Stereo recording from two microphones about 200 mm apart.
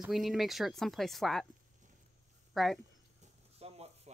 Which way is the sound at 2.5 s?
Centre (ahead or behind).